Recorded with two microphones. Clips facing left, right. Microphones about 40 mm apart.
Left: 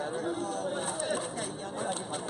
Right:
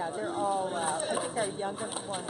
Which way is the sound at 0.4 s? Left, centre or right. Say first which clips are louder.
Right 4 dB; centre.